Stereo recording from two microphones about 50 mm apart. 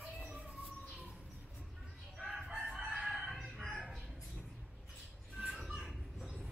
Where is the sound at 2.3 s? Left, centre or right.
Centre.